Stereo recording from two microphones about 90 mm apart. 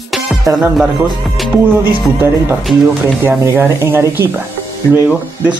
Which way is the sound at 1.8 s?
25° right (ahead or behind).